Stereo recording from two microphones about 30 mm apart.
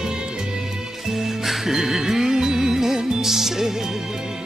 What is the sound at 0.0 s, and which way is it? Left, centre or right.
Music, right.